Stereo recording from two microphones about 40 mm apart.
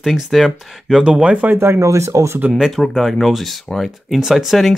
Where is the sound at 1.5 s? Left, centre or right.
Right.